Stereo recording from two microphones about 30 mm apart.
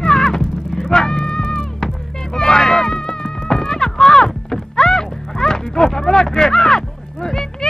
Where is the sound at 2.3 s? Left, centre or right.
Centre.